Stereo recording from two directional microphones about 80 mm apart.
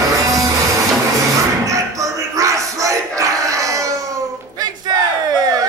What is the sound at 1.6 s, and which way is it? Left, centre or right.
Crowd, right.